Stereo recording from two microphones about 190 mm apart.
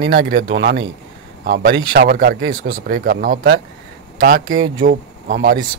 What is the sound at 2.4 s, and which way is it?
Speech, 90° right.